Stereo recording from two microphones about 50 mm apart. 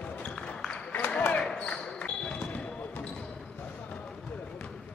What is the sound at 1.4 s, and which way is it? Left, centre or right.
Basketball bounce, centre.